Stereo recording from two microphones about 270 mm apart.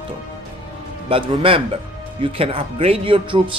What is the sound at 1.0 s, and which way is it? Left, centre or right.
Speech, centre.